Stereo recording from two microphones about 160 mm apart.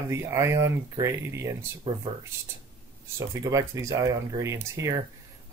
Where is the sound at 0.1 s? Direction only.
20° right (ahead or behind).